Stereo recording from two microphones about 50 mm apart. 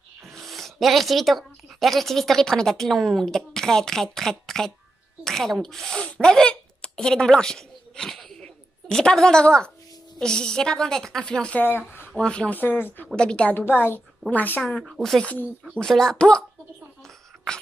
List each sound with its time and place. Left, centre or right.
0.3 s a woman's voice: centre
6.2 s a woman's voice: centre
8.4 s a sound: centre
10.1 s a woman's voice: centre
11.2 s a woman's voice: centre
12.4 s speech: left
13.1 s a woman's voice: centre
13.5 s a woman's voice: left
14.9 s a woman's voice: centre
15.8 s a woman's voice: centre